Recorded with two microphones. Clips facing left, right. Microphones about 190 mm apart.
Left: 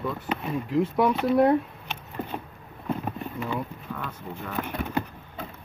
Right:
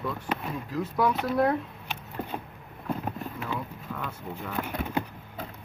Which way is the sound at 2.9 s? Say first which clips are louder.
Left 2 dB; centre (ahead or behind).